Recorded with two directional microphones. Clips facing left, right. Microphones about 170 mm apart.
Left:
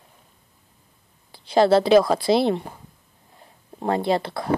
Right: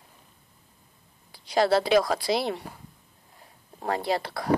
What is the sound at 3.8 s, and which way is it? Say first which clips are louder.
Speech: left 5 dB; 25° left (ahead or behind).